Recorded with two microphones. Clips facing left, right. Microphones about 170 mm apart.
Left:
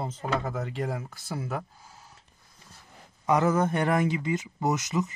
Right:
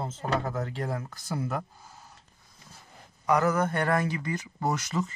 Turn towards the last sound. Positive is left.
turn(degrees=20)  # may be behind; listen again after turning